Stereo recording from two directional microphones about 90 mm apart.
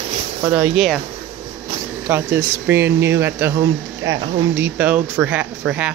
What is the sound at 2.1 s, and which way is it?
Speech, 25° right (ahead or behind).